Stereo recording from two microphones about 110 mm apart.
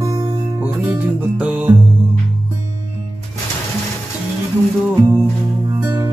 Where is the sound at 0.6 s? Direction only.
10° right (ahead or behind).